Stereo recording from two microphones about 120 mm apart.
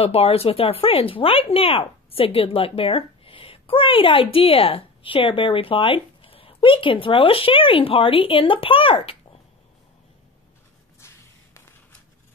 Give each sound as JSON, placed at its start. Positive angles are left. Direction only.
{"t": 0.0, "sound": "speech", "side_deg": 55}